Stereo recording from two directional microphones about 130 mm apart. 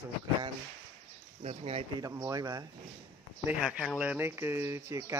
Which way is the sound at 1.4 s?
50° right (ahead or behind).